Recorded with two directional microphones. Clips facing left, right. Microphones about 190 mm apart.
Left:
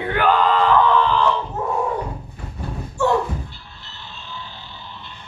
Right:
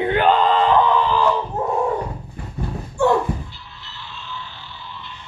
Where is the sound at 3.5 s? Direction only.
50° left (ahead or behind).